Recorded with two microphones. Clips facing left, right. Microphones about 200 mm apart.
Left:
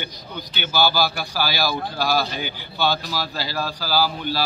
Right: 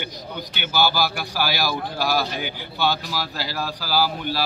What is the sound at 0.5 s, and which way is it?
Speech, 15° right (ahead or behind).